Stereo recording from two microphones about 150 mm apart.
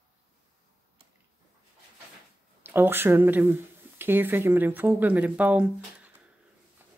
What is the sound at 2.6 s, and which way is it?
Speech, 15° right (ahead or behind).